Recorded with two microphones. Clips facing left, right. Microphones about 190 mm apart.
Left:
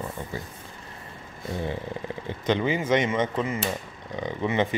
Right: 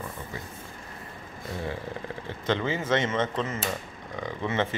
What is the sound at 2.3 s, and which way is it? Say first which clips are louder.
A man's voice: left 3 dB; 15° left (ahead or behind).